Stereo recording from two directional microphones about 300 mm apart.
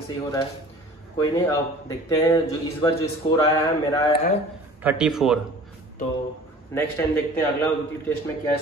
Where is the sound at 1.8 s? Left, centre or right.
Centre.